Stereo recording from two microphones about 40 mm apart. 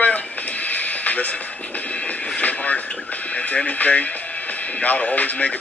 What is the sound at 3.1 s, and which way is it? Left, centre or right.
Speech, left.